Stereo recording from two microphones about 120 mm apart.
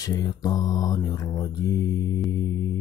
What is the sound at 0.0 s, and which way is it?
Mantra, 30° left (ahead or behind).